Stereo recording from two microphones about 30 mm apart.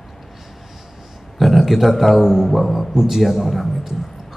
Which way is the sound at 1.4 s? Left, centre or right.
Centre.